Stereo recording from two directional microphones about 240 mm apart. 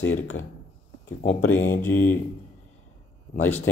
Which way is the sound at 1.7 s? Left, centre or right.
Centre.